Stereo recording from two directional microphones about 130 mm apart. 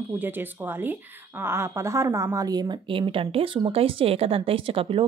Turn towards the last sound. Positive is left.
turn(degrees=-40)  # may be behind; listen again after turning